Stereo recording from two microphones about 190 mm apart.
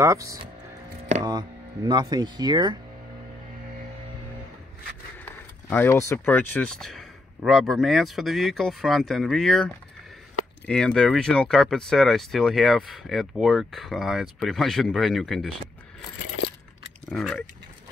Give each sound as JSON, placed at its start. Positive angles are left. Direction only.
{"t": 0.0, "sound": "speech", "side_deg": -15}
{"t": 5.2, "sound": "speech", "side_deg": 10}
{"t": 10.7, "sound": "speech", "side_deg": 5}
{"t": 17.1, "sound": "speech", "side_deg": 5}